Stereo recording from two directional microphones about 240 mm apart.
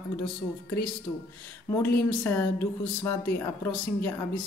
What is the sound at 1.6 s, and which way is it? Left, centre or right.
Speech, centre.